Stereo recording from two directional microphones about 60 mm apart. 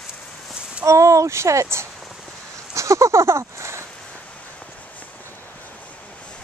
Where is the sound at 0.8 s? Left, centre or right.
Right.